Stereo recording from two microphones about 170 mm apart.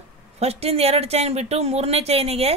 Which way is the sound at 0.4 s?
35° right (ahead or behind).